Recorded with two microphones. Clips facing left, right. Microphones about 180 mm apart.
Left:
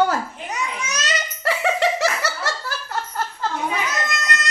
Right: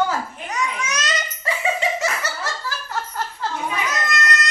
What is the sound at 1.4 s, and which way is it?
Laughter, 75° left (ahead or behind).